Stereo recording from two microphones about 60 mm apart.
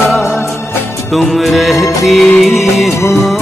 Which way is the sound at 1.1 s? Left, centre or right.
Centre.